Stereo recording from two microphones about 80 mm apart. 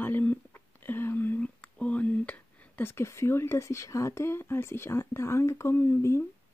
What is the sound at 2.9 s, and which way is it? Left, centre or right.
Speech, left.